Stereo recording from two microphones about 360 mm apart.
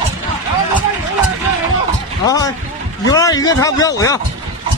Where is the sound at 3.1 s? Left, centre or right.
Centre.